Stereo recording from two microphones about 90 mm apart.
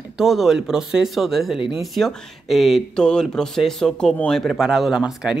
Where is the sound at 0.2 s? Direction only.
Centre (ahead or behind).